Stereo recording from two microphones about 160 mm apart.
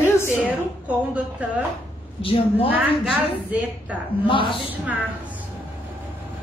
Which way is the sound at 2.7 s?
10° right (ahead or behind).